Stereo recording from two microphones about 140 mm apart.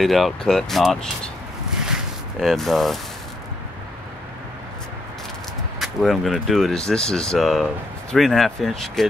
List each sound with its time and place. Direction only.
0.0 s speech: centre (ahead or behind)
2.4 s speech: centre (ahead or behind)
5.8 s speech: centre (ahead or behind)